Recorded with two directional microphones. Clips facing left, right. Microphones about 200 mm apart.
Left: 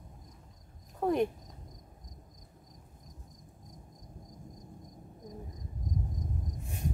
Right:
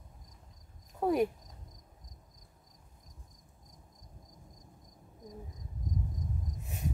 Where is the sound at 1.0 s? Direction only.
5° right (ahead or behind).